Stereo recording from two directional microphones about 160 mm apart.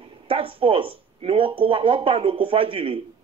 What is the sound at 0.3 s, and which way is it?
A man's voice, 35° right (ahead or behind).